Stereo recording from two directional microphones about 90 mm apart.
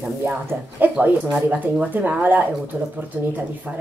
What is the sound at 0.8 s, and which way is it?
A woman's voice, 20° right (ahead or behind).